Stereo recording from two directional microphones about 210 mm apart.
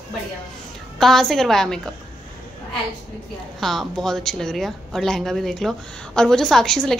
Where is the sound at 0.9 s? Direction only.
Centre (ahead or behind).